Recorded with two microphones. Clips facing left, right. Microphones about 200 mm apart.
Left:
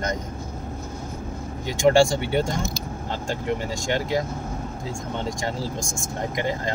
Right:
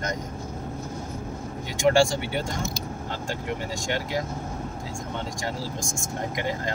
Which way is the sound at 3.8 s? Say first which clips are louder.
Left 5 dB; 25° left (ahead or behind).